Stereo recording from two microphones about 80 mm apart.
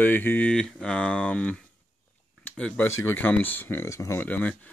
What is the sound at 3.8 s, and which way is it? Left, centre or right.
Speech, left.